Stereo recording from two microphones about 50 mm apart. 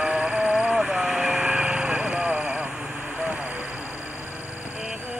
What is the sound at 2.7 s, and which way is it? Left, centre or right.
Vehicle, centre.